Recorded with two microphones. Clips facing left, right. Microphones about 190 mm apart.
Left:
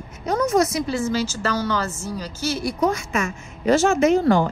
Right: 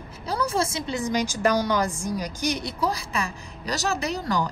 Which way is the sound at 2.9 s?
35° right (ahead or behind).